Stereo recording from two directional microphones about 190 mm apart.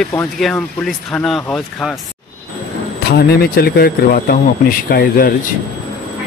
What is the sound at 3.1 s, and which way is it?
Speech, 55° left (ahead or behind).